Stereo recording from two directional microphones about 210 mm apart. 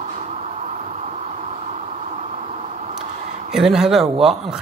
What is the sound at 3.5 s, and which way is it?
Speech, centre (ahead or behind).